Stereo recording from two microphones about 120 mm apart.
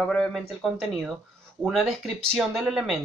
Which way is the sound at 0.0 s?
5° left (ahead or behind).